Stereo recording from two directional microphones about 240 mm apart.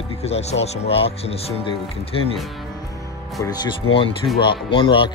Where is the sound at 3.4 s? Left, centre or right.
Centre.